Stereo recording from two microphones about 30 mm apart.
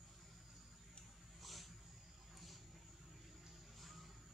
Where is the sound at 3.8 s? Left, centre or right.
Centre.